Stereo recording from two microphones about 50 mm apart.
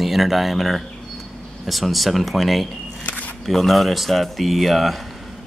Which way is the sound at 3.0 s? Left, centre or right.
Left.